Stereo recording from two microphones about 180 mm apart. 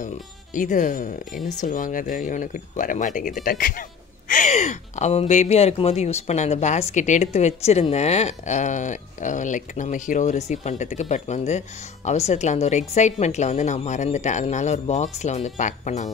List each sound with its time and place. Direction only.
0.0 s speech: 45° left (ahead or behind)
4.3 s speech: 40° left (ahead or behind)